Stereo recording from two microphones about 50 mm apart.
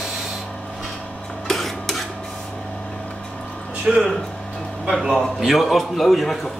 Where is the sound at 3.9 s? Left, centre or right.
Centre.